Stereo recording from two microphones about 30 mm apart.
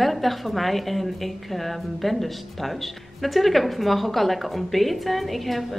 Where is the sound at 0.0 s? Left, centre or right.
Centre.